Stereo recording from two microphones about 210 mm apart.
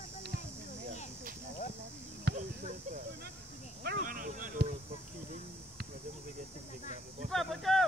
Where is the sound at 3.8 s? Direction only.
45° right (ahead or behind).